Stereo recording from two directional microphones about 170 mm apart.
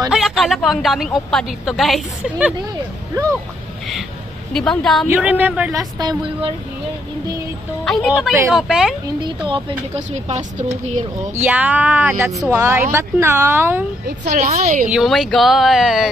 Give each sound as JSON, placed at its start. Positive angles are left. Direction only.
{"t": 0.1, "sound": "a woman's voice", "side_deg": 0}
{"t": 4.6, "sound": "a woman's voice", "side_deg": 0}
{"t": 5.0, "sound": "speech", "side_deg": -10}
{"t": 7.8, "sound": "a woman's voice", "side_deg": 0}
{"t": 9.9, "sound": "speech", "side_deg": -40}
{"t": 11.4, "sound": "speech", "side_deg": -10}
{"t": 14.2, "sound": "a woman's voice", "side_deg": -50}
{"t": 14.9, "sound": "a woman's voice", "side_deg": 0}